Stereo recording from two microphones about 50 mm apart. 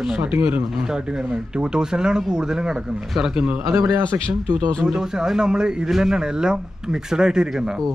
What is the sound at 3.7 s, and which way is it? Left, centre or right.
Speech, right.